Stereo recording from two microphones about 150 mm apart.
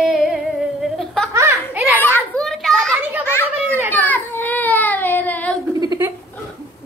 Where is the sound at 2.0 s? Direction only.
15° left (ahead or behind).